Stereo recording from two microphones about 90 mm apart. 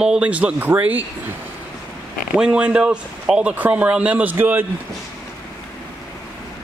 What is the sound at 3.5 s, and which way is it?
Speech, 20° right (ahead or behind).